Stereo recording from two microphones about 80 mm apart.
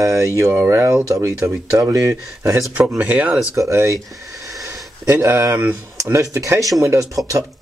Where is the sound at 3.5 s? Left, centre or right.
Right.